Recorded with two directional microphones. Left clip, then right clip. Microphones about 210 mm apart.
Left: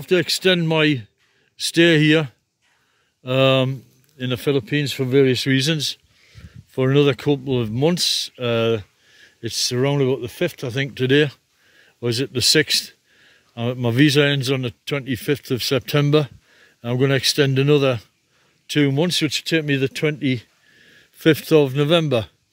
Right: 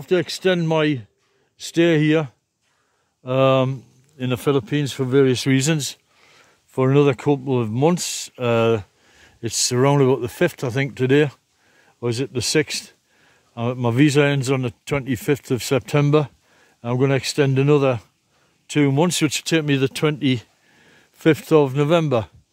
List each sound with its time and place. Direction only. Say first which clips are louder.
0.0 s speech: left 2 dB; centre (ahead or behind)
19.0 s speech: even; 20° right (ahead or behind)
20.8 s speech: left 1 dB; 5° right (ahead or behind)